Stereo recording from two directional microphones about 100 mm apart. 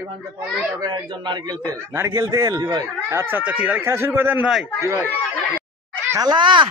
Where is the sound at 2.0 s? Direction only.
30° right (ahead or behind).